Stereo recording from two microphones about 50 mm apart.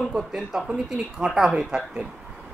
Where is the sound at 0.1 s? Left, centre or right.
Centre.